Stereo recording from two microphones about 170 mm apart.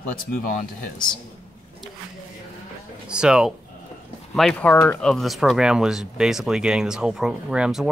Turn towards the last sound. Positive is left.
turn(degrees=-5)  # may be behind; listen again after turning